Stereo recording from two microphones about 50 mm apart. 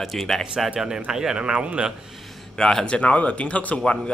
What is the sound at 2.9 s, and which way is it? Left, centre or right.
Speech, left.